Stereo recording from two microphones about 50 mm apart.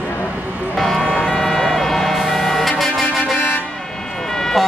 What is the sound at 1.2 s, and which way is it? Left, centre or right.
Emergency vehicle, centre.